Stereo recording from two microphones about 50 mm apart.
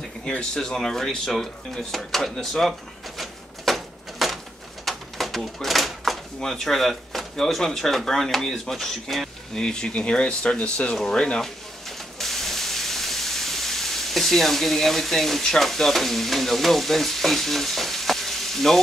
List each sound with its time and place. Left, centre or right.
0.2 s speech: centre
3.2 s a sound: centre
6.4 s speech: centre
9.6 s speech: centre
12.2 s steam: centre